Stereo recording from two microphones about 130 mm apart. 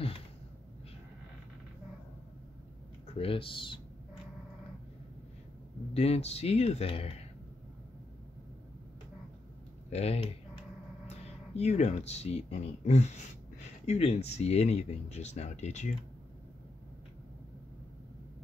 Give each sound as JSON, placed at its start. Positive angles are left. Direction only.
{"t": 3.1, "sound": "speech", "side_deg": 45}
{"t": 5.9, "sound": "speech", "side_deg": 50}
{"t": 9.8, "sound": "speech", "side_deg": 55}